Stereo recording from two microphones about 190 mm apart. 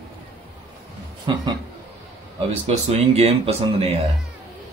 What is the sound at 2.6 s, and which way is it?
Speech, 30° right (ahead or behind).